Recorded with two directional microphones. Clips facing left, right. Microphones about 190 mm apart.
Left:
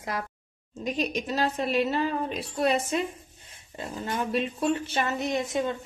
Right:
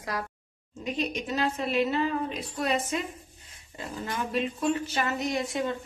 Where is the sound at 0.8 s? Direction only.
40° left (ahead or behind).